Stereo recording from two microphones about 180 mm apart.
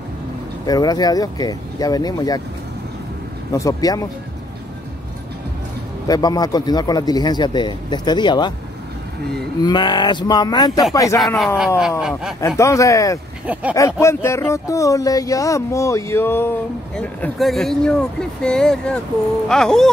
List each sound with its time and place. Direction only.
0.7 s a man's voice: 20° left (ahead or behind)
3.5 s a man's voice: 20° left (ahead or behind)
6.0 s a man's voice: 20° left (ahead or behind)
9.6 s a man's voice: 25° left (ahead or behind)
11.3 s speech: centre (ahead or behind)
12.4 s speech: 15° left (ahead or behind)
13.5 s speech: 10° right (ahead or behind)
13.7 s speech: 15° left (ahead or behind)